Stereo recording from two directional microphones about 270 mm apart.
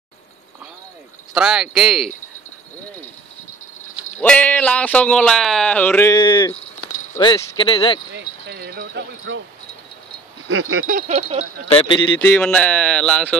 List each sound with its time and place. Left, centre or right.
1.3 s speech: centre
4.2 s speech: centre
8.1 s speech: right
10.5 s a sound: right
10.9 s wind chime: right
11.6 s speech: centre
12.2 s speech: centre